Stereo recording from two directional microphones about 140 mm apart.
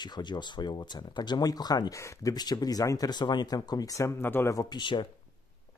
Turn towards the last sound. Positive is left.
turn(degrees=35)  # may be behind; listen again after turning